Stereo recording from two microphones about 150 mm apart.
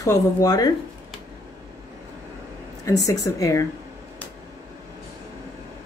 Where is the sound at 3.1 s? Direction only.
20° left (ahead or behind).